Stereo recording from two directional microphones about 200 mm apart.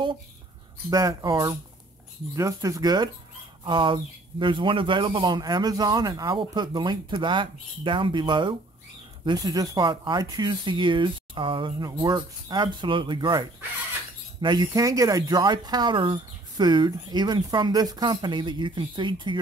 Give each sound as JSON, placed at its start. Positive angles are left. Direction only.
{"t": 0.8, "sound": "speech", "side_deg": -15}